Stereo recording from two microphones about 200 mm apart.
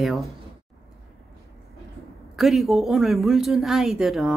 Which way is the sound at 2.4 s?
Centre (ahead or behind).